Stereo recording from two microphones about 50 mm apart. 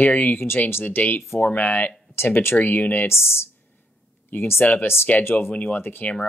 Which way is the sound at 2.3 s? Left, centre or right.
Left.